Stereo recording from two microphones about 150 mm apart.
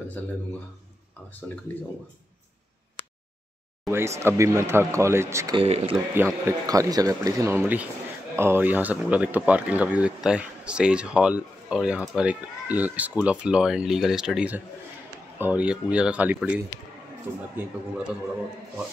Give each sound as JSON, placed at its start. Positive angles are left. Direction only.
{"t": 3.8, "sound": "speech", "side_deg": -20}
{"t": 5.6, "sound": "speech", "side_deg": -40}
{"t": 6.1, "sound": "speech", "side_deg": -15}